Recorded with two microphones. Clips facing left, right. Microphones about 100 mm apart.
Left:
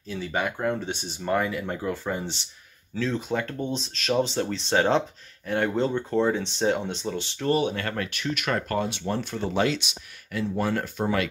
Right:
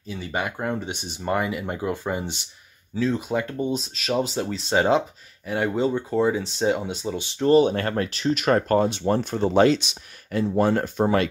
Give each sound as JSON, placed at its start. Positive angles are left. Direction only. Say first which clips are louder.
{"t": 0.0, "sound": "speech", "louder": "even", "side_deg": -10}
{"t": 7.3, "sound": "speech", "louder": "right 8 dB", "side_deg": -30}